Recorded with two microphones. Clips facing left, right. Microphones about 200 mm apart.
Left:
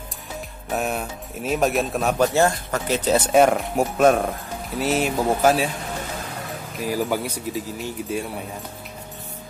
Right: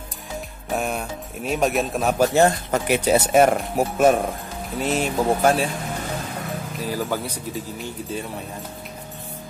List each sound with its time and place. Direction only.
0.7 s speech: centre (ahead or behind)
2.3 s speech: 20° right (ahead or behind); by 5.7 s 5° left (ahead or behind)
6.9 s speech: 10° left (ahead or behind)